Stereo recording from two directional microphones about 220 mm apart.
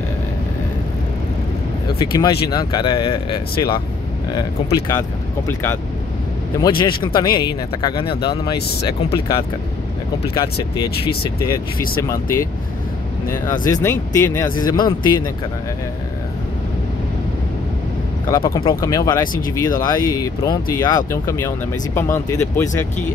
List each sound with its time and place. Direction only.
2.0 s speech: 15° left (ahead or behind)
6.8 s speech: 20° left (ahead or behind)
12.0 s speech: 15° left (ahead or behind)
18.3 s speech: 15° left (ahead or behind)